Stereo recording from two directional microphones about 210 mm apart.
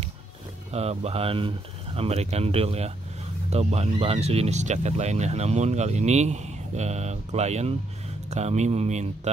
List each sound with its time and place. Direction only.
0.7 s speech: 30° right (ahead or behind)